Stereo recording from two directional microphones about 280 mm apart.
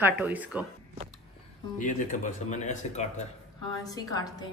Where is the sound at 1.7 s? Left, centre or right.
Left.